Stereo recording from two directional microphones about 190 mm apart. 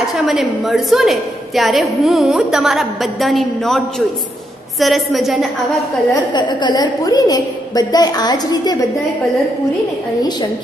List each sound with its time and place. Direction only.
0.0 s a woman's voice: centre (ahead or behind)
6.3 s a woman's voice: 25° left (ahead or behind)